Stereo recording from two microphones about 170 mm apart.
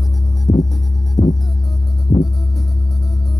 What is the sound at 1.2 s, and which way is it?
Music, 20° left (ahead or behind).